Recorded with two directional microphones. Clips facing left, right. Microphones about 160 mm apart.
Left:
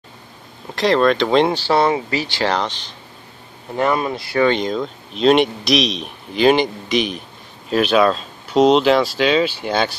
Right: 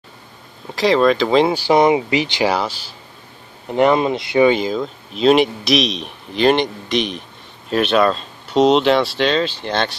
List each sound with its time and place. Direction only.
0.7 s a man's voice: centre (ahead or behind)
1.6 s speech: 15° right (ahead or behind)
3.7 s speech: 20° right (ahead or behind)
4.5 s a man's voice: 5° right (ahead or behind)